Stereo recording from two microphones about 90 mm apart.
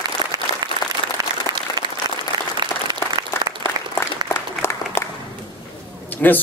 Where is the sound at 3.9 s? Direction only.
25° left (ahead or behind).